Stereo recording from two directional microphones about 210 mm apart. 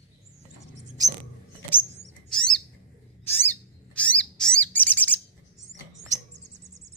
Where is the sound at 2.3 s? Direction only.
5° left (ahead or behind).